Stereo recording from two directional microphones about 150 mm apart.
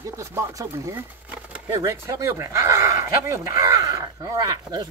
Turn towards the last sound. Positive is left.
turn(degrees=-25)  # may be behind; listen again after turning